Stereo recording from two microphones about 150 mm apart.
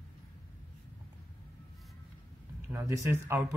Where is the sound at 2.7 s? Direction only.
20° right (ahead or behind).